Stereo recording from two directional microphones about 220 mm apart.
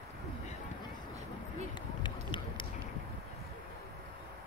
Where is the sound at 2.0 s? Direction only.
20° left (ahead or behind).